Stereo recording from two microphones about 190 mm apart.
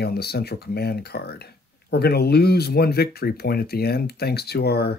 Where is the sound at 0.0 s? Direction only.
55° left (ahead or behind).